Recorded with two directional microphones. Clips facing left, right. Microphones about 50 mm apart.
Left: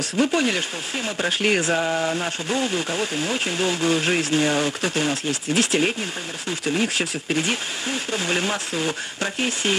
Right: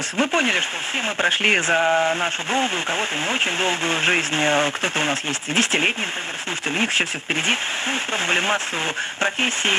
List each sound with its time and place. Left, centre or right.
0.2 s speech: right